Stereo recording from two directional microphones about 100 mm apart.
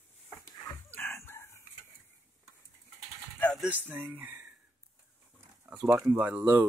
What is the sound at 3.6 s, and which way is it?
Speech, 15° right (ahead or behind).